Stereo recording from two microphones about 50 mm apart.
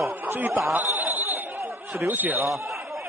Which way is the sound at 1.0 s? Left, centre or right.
Right.